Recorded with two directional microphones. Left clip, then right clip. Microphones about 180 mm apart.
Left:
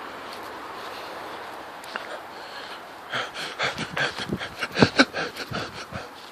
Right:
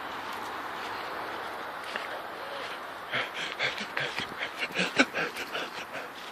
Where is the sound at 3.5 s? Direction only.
35° left (ahead or behind).